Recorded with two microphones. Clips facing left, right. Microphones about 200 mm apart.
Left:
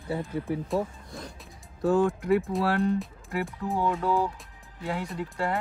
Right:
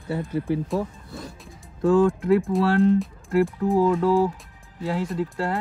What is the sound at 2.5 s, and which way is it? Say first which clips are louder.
Speech: right 5 dB; centre (ahead or behind).